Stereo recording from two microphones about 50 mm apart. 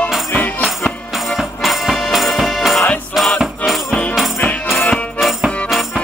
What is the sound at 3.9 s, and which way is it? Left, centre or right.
Music, left.